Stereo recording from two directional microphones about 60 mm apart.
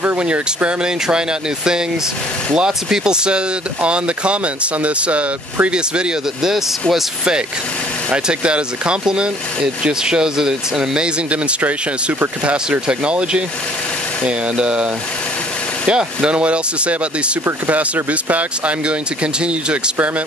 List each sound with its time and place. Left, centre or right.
0.0 s speech: right
2.5 s speech: centre
12.4 s speech: centre
15.9 s speech: centre
19.4 s speech: centre